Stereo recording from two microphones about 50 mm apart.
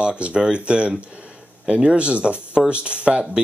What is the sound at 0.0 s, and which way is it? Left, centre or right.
Speech, right.